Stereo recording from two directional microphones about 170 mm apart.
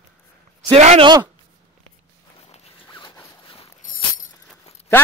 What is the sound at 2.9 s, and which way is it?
Zipper, 25° left (ahead or behind).